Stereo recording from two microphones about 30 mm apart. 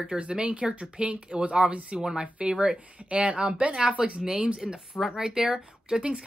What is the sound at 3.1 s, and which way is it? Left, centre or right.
Speech, right.